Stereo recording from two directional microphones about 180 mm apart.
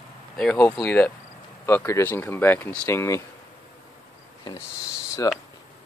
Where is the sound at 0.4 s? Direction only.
5° left (ahead or behind).